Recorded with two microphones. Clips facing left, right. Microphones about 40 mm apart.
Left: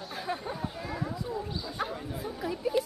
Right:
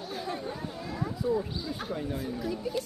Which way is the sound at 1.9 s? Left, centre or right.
Centre.